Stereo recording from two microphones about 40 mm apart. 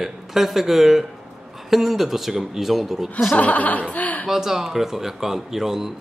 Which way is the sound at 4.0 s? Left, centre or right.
Left.